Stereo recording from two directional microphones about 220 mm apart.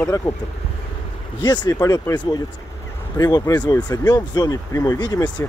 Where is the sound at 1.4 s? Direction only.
20° left (ahead or behind).